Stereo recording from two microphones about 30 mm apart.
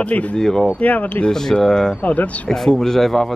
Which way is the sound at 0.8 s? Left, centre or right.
Left.